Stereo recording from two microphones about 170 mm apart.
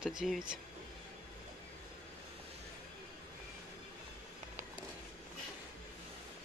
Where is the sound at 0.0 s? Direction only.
Centre (ahead or behind).